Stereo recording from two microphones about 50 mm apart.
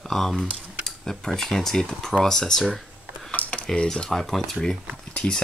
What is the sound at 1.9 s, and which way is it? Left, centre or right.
Speech, centre.